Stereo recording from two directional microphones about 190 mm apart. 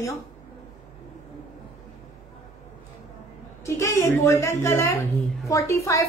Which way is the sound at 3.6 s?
15° left (ahead or behind).